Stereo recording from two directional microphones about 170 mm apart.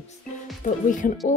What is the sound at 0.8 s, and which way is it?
Speech, 50° left (ahead or behind).